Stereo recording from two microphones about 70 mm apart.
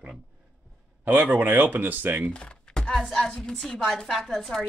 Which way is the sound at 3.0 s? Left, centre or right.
Centre.